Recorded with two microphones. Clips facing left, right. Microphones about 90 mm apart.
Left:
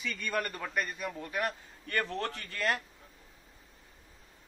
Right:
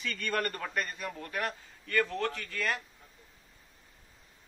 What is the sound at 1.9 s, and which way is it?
Speech, 35° left (ahead or behind).